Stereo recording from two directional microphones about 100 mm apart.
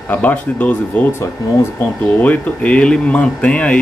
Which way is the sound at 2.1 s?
15° left (ahead or behind).